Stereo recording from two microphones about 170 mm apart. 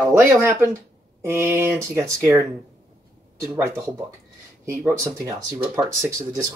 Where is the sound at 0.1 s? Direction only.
15° right (ahead or behind).